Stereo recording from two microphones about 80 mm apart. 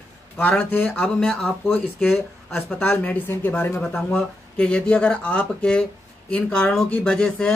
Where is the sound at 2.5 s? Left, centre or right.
Centre.